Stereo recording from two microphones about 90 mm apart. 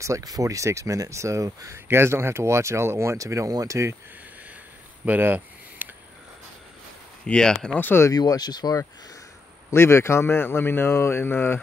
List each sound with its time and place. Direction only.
0.0 s speech: 40° right (ahead or behind)
5.0 s a sound: 20° right (ahead or behind)
7.2 s speech: 10° left (ahead or behind)
7.7 s a man's voice: 25° left (ahead or behind)
8.1 s speech: 45° left (ahead or behind)
9.7 s a man's voice: 30° left (ahead or behind)